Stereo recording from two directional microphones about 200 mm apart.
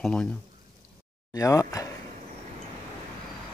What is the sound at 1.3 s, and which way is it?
Speech, 15° left (ahead or behind).